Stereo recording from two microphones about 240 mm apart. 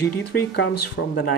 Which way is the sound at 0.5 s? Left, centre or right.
Left.